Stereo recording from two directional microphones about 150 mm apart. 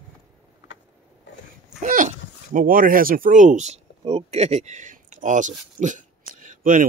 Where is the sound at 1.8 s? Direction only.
60° right (ahead or behind).